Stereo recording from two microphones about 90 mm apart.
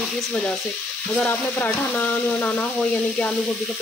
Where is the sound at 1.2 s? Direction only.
20° left (ahead or behind).